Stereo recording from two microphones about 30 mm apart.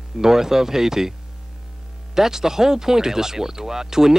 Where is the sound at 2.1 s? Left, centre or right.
Centre.